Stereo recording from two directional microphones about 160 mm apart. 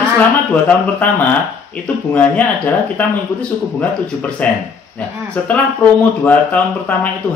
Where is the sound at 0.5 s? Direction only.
10° left (ahead or behind).